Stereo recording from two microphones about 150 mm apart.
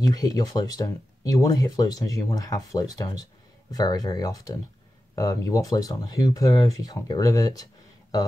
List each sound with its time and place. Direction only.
0.0 s speech: 25° left (ahead or behind)